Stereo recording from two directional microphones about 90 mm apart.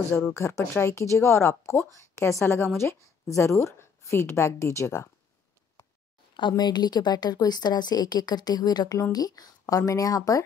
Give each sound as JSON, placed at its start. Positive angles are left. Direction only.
{"t": 0.1, "sound": "a woman's voice", "side_deg": 30}
{"t": 6.5, "sound": "a woman's voice", "side_deg": 50}